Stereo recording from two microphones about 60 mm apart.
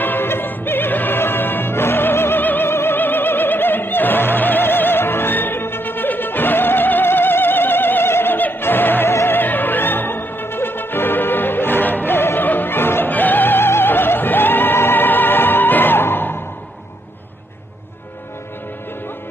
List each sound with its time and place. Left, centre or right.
0.0 s music: left